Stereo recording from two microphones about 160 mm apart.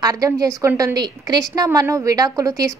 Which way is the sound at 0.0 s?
25° right (ahead or behind).